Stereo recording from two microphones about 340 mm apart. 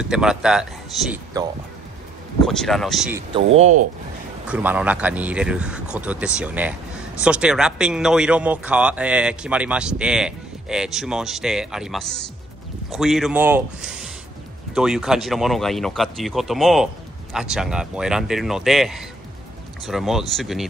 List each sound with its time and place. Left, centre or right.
0.0 s speech: centre
3.5 s speech: centre
4.5 s speech: centre